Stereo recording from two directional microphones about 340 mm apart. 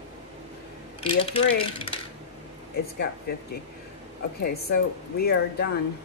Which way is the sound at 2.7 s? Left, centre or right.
Left.